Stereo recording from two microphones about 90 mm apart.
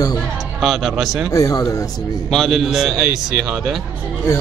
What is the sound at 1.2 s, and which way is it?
Speech, 40° left (ahead or behind).